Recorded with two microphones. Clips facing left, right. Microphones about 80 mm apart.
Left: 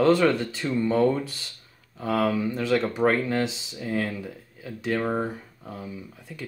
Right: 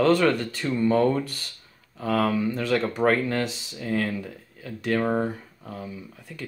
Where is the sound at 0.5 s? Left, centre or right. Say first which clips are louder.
Right 1 dB; centre.